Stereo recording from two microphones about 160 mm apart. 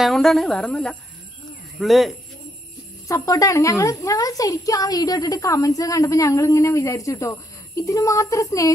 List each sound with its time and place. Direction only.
0.0 s a woman's voice: centre (ahead or behind)
3.1 s a woman's voice: 20° left (ahead or behind)